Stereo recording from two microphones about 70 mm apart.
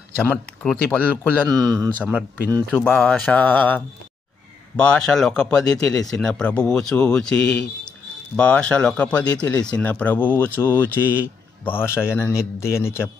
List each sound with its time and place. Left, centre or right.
0.2 s speech: left
1.5 s speech: right
2.0 s speech: centre
2.9 s speech: centre
3.3 s speech: left